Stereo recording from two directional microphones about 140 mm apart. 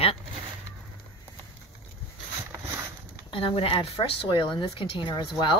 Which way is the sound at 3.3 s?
40° left (ahead or behind).